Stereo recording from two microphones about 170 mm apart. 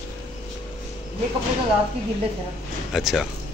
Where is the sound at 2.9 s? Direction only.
Centre (ahead or behind).